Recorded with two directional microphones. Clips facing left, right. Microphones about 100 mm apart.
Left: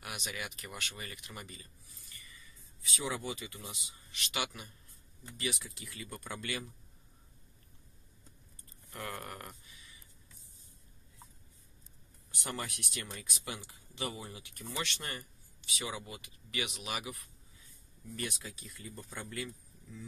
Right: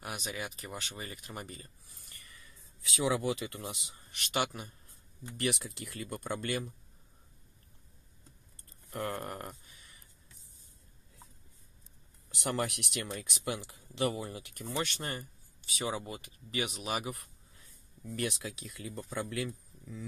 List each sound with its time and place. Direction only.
0.0 s speech: 40° right (ahead or behind)
5.4 s speech: 65° right (ahead or behind)
6.1 s speech: 45° right (ahead or behind)
8.9 s speech: 40° right (ahead or behind)
12.3 s speech: 80° right
13.0 s speech: 60° right (ahead or behind); by 17.1 s 40° right (ahead or behind)
17.1 s speech: 60° right (ahead or behind); by 19.1 s 80° right
19.2 s speech: 65° right (ahead or behind)